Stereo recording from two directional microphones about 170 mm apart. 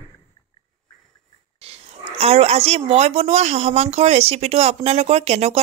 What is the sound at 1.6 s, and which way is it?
Speech, 35° right (ahead or behind).